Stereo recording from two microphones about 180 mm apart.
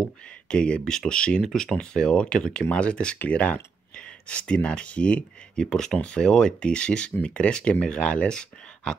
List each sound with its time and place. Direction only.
0.0 s speech: 5° left (ahead or behind)